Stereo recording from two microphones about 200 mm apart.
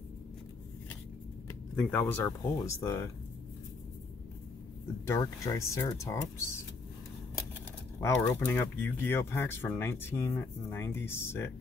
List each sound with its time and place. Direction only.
1.8 s speech: 10° left (ahead or behind)
5.0 s speech: 15° left (ahead or behind)
8.0 s speech: 15° left (ahead or behind)